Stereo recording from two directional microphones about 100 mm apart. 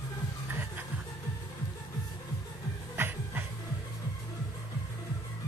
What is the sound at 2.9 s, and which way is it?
Music, 20° right (ahead or behind).